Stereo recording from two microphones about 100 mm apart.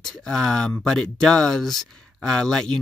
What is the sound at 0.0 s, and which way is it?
Speech, 5° left (ahead or behind).